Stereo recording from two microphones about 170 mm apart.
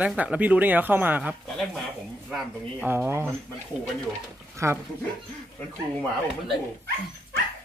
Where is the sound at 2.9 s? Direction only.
15° right (ahead or behind).